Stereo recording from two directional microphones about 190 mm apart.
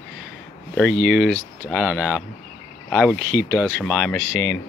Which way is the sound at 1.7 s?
10° right (ahead or behind).